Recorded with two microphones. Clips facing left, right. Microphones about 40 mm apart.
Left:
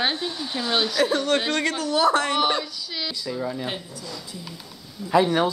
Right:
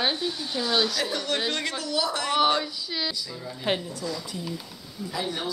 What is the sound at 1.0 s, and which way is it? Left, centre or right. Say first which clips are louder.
A woman's voice: left 6 dB; left.